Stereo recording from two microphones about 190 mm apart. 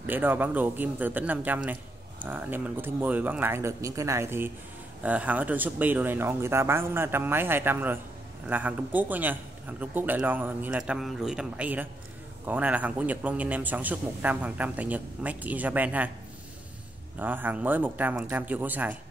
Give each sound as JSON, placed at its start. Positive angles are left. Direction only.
{"t": 0.0, "sound": "a man's voice", "side_deg": -10}
{"t": 17.2, "sound": "a man's voice", "side_deg": -10}